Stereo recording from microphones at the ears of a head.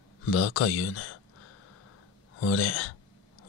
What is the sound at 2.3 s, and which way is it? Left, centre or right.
Speech, left.